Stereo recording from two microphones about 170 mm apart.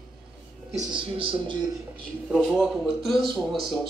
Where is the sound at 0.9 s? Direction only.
30° right (ahead or behind).